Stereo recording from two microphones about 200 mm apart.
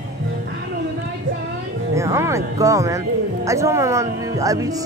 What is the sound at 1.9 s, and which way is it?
Music, 15° right (ahead or behind).